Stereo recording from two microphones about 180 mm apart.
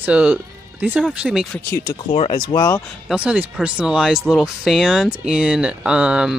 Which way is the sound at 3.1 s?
5° right (ahead or behind).